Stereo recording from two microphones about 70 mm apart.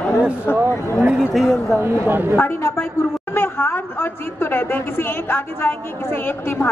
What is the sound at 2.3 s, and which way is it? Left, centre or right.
A man's voice, left.